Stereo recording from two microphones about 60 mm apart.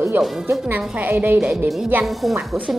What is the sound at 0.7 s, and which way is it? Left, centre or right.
Speech, right.